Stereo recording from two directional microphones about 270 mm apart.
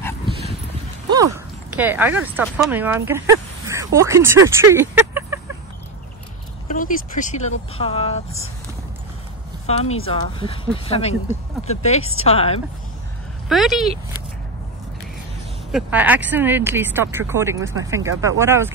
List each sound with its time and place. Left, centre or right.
1.1 s speech: centre
6.7 s speech: left
9.7 s speech: left
13.5 s speech: centre
15.7 s speech: centre